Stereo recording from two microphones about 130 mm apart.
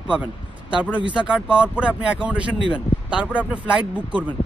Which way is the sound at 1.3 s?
10° right (ahead or behind).